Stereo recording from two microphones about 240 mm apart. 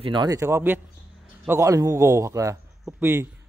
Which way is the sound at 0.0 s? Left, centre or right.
Centre.